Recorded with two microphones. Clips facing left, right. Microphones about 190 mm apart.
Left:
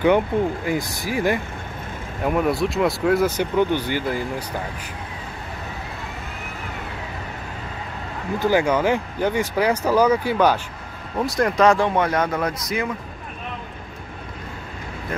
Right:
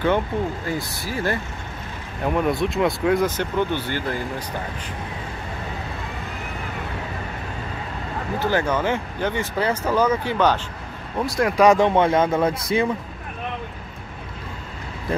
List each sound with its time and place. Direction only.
0.7 s speech: 15° left (ahead or behind)
2.2 s speech: centre (ahead or behind)
8.4 s speech: 10° left (ahead or behind)
11.1 s speech: centre (ahead or behind)
11.6 s speech: 20° right (ahead or behind)